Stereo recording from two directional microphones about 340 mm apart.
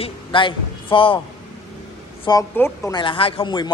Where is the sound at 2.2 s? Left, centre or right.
Centre.